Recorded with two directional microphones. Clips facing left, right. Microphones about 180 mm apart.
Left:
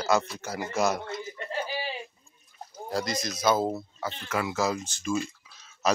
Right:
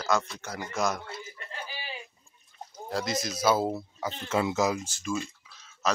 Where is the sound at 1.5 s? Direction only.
30° left (ahead or behind).